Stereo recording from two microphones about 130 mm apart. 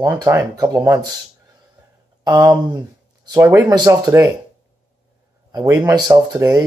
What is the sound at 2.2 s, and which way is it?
Speech, 30° right (ahead or behind).